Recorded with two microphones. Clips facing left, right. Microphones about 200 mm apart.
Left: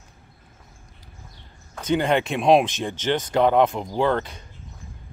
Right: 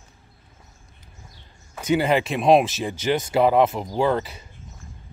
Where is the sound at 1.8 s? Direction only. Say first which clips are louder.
Right 1 dB; 10° right (ahead or behind).